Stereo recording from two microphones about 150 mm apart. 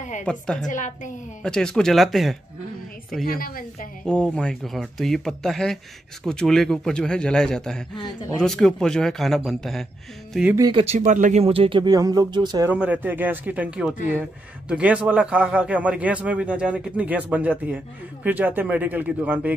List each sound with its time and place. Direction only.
0.2 s speech: 5° left (ahead or behind)
0.7 s a woman's voice: 55° left (ahead or behind)
1.4 s speech: 5° left (ahead or behind)
3.3 s a woman's voice: 75° left (ahead or behind)
4.0 s speech: 5° left (ahead or behind)
10.7 s speech: 40° right (ahead or behind)
11.4 s speech: 40° right (ahead or behind)
12.6 s a man's voice: 10° right (ahead or behind)